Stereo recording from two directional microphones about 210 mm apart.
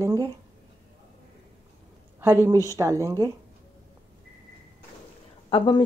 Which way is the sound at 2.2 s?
10° right (ahead or behind).